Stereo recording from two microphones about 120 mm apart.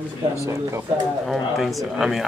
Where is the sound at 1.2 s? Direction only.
Centre (ahead or behind).